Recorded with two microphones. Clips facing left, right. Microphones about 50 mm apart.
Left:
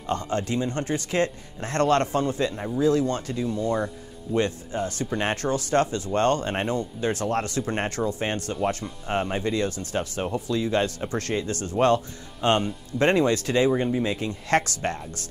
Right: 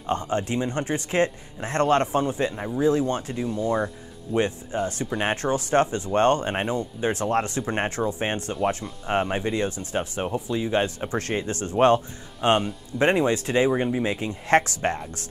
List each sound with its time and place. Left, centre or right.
0.0 s speech: right
3.4 s speech: centre
8.5 s speech: centre